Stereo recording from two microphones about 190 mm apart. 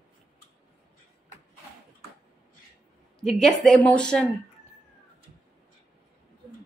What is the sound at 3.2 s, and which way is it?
Speech, centre (ahead or behind).